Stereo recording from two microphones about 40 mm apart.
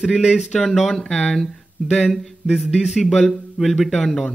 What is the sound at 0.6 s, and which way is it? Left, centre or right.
Speech, centre.